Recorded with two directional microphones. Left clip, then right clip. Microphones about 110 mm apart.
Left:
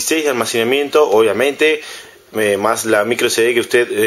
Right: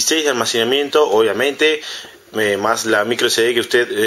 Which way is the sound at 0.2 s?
5° left (ahead or behind).